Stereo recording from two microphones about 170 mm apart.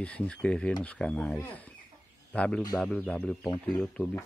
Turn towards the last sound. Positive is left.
turn(degrees=10)  # may be behind; listen again after turning